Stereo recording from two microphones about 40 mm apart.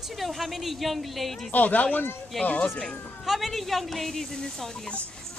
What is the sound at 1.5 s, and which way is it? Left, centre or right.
Speech, left.